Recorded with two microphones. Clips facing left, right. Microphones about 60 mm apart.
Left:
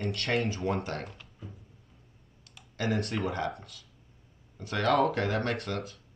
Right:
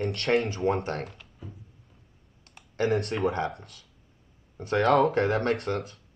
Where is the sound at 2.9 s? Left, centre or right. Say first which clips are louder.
Right 4 dB; right.